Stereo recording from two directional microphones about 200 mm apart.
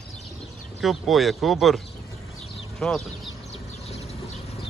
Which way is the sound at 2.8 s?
Centre (ahead or behind).